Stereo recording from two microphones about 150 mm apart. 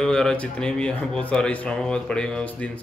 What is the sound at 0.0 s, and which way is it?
Speech, 5° left (ahead or behind).